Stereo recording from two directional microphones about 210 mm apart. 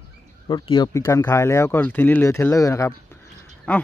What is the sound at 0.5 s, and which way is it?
A man's voice, 20° left (ahead or behind).